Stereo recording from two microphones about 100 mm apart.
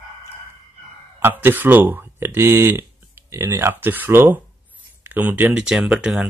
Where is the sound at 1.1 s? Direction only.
20° right (ahead or behind).